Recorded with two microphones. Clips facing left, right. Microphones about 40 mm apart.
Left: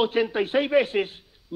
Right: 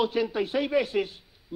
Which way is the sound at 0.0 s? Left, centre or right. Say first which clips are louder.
Left 3 dB; left.